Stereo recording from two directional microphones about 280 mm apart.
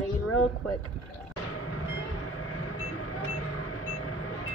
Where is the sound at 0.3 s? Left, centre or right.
Left.